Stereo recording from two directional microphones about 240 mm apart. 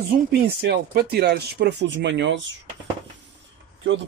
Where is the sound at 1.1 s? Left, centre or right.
Right.